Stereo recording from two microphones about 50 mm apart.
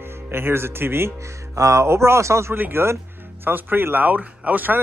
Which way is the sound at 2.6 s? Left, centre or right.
Right.